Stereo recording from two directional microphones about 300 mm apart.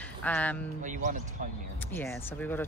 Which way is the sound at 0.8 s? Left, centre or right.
Right.